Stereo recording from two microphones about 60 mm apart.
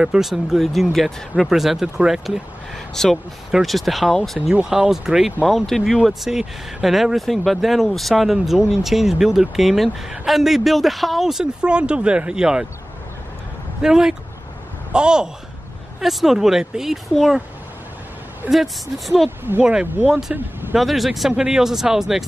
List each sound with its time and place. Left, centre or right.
0.0 s speech: centre
2.9 s speech: centre
11.6 s speech: centre
13.8 s speech: centre
16.0 s speech: centre
18.5 s speech: centre
19.6 s speech: centre
20.1 s speech: centre
21.3 s speech: centre